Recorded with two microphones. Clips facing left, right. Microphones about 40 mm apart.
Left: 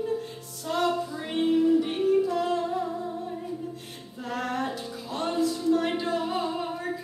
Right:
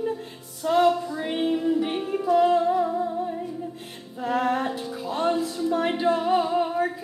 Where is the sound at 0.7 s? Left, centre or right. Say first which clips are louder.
Right 6 dB; centre.